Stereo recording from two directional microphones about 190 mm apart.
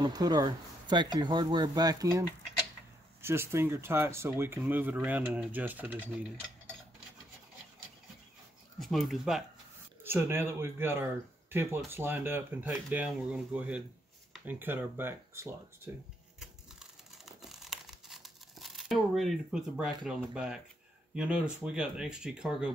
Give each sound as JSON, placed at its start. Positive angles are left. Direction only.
{"t": 0.0, "sound": "speech", "side_deg": -20}
{"t": 8.7, "sound": "speech", "side_deg": 0}
{"t": 10.0, "sound": "speech", "side_deg": -10}
{"t": 16.3, "sound": "tearing", "side_deg": 0}
{"t": 20.1, "sound": "speech", "side_deg": -5}